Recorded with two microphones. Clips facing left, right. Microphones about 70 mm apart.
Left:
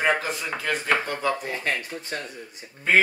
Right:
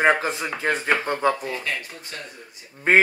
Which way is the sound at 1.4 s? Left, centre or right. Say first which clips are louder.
Left 1 dB; left.